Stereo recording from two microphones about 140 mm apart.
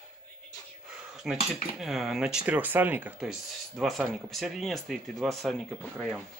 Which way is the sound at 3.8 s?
Centre (ahead or behind).